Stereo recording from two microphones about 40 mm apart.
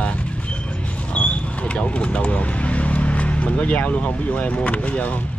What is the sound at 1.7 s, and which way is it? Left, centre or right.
Speech, left.